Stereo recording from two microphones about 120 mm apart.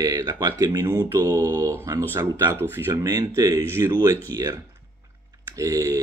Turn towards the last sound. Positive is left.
turn(degrees=-30)  # may be behind; listen again after turning